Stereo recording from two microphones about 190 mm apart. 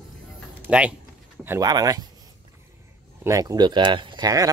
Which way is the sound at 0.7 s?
5° right (ahead or behind).